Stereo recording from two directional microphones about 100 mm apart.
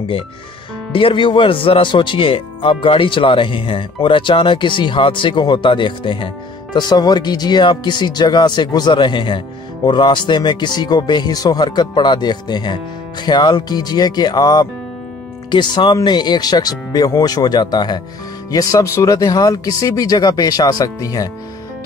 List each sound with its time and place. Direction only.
0.9 s speech: 55° left (ahead or behind); by 21.3 s 35° left (ahead or behind)